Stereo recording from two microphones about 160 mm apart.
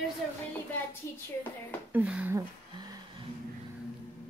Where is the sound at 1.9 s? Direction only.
10° right (ahead or behind).